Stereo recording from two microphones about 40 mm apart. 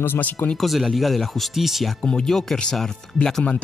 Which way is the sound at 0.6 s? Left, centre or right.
Centre.